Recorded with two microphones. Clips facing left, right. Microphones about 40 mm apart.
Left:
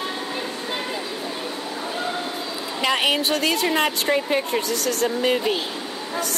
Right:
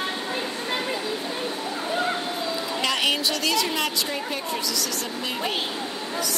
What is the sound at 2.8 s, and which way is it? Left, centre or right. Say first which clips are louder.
A woman's voice: left 4 dB; centre.